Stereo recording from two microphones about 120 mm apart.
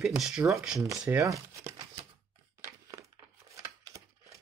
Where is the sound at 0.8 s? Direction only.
25° right (ahead or behind).